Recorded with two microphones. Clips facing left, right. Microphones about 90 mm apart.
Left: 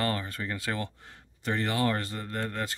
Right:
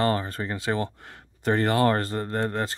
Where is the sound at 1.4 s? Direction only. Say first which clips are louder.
Right 7 dB; 45° right (ahead or behind).